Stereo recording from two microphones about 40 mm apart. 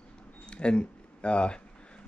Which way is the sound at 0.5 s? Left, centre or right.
Left.